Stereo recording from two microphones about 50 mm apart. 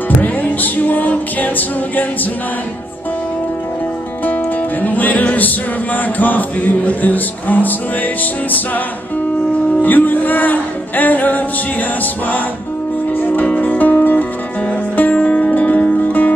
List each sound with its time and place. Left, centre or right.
0.2 s music: left
4.8 s music: left
9.8 s music: left
13.1 s music: left
15.1 s music: left